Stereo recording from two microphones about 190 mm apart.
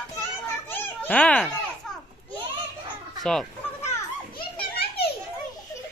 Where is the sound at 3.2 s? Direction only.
Centre (ahead or behind).